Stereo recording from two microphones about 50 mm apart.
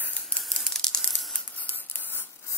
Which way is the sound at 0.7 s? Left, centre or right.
Centre.